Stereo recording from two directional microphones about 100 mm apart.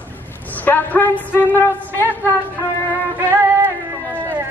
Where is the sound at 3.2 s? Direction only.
25° right (ahead or behind).